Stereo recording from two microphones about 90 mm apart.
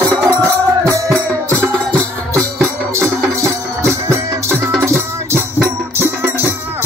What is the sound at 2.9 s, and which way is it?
Music, 30° right (ahead or behind).